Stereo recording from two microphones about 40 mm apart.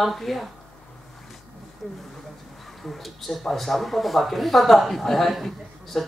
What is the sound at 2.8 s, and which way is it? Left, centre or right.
Speech, centre.